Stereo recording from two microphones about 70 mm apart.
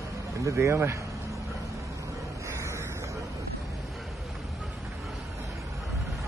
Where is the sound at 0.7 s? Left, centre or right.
Right.